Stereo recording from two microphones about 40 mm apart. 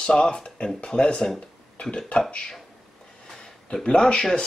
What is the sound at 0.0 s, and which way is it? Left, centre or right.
Speech, left.